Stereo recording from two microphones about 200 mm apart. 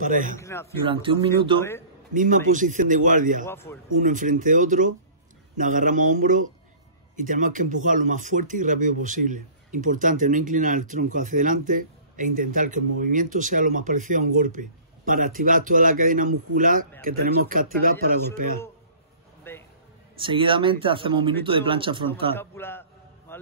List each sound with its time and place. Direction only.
0.0 s speech: 40° right (ahead or behind)
0.4 s speech: 15° left (ahead or behind)
0.8 s speech: 25° right (ahead or behind)
2.1 s speech: 40° right (ahead or behind)
3.4 s speech: 10° left (ahead or behind)
4.0 s a man's voice: 40° right (ahead or behind)
19.5 s a sound: 10° left (ahead or behind)
20.2 s speech: 25° right (ahead or behind)
22.3 s a sound: 10° left (ahead or behind)